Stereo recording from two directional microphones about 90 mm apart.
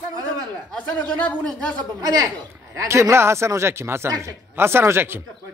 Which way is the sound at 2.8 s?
30° right (ahead or behind).